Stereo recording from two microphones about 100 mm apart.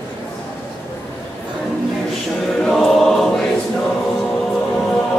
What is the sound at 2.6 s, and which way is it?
Choir, 5° left (ahead or behind).